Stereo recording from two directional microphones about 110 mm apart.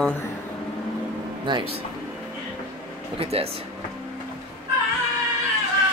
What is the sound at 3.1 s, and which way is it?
Speech, 65° right (ahead or behind).